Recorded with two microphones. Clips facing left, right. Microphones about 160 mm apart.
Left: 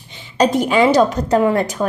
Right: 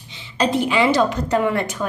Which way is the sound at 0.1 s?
45° left (ahead or behind).